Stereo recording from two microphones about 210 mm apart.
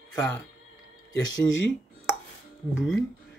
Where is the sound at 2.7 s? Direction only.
Centre (ahead or behind).